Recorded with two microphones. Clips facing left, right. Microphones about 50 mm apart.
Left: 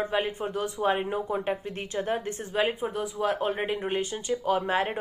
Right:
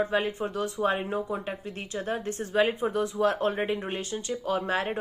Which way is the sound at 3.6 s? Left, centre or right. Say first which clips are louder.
Left 2 dB; left.